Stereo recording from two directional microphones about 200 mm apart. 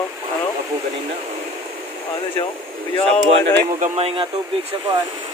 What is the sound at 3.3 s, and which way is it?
Speech, 30° right (ahead or behind).